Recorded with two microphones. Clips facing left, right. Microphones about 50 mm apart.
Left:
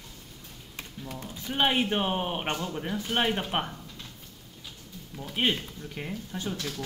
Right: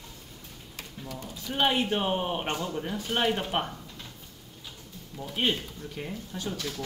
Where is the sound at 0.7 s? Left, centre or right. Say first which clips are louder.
Left 1 dB; left.